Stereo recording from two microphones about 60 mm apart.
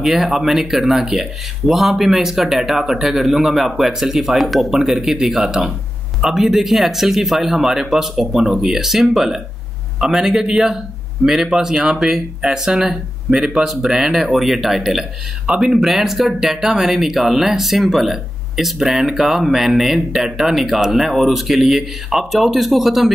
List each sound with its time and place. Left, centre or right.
0.0 s speech: centre